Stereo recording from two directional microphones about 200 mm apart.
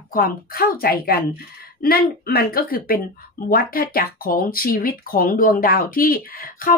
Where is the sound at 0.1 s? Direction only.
45° left (ahead or behind).